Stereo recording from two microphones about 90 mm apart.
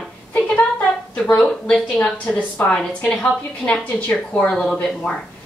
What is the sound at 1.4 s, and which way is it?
Speech, centre (ahead or behind).